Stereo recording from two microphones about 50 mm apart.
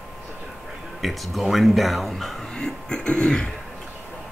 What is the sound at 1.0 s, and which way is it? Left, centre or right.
Speech, centre.